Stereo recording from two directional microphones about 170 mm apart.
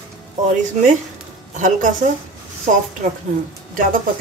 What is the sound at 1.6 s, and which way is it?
Speech, 50° right (ahead or behind).